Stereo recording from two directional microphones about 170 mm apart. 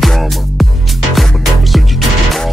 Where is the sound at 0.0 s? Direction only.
Centre (ahead or behind).